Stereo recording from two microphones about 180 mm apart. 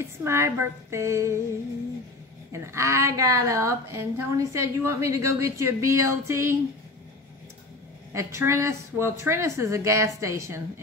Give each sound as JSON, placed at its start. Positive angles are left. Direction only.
{"t": 0.0, "sound": "a woman's voice", "side_deg": -15}
{"t": 2.5, "sound": "a woman's voice", "side_deg": -15}
{"t": 8.1, "sound": "a woman's voice", "side_deg": -15}